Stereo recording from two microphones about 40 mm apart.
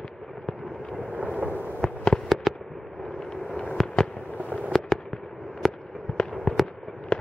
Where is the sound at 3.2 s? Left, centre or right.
Left.